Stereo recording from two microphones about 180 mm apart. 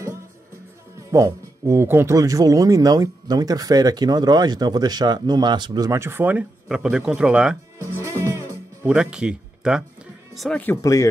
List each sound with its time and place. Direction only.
1.1 s speech: 15° right (ahead or behind)
7.8 s music: 15° right (ahead or behind)
10.3 s speech: centre (ahead or behind); by 11.1 s 20° left (ahead or behind)